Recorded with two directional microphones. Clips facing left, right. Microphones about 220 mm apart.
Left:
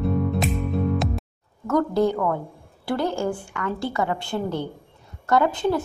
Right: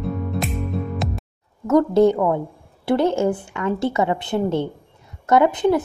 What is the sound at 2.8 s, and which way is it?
Speech, 20° right (ahead or behind).